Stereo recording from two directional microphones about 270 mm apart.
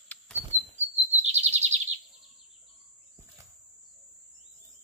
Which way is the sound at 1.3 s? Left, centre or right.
Right.